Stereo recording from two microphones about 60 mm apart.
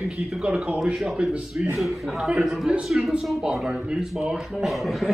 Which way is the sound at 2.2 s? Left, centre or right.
Centre.